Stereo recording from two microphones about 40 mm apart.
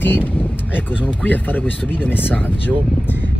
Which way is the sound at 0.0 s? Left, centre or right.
Left.